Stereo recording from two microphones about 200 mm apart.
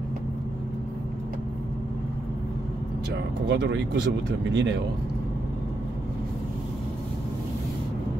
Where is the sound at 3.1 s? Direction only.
60° right (ahead or behind).